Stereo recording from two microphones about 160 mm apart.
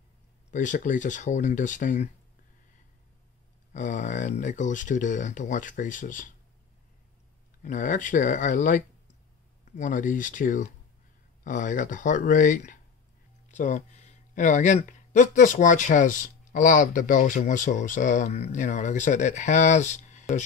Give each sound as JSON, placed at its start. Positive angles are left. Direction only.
{"t": 0.5, "sound": "speech", "side_deg": 50}
{"t": 3.7, "sound": "speech", "side_deg": 50}
{"t": 7.6, "sound": "speech", "side_deg": 50}